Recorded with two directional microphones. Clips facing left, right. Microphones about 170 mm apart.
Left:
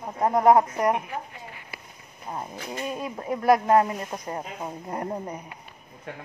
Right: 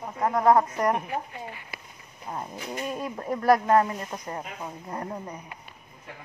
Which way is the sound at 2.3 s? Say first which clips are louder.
Left 1 dB; 15° left (ahead or behind).